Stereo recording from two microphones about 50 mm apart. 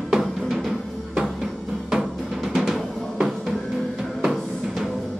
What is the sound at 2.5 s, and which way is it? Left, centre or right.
Drum, centre.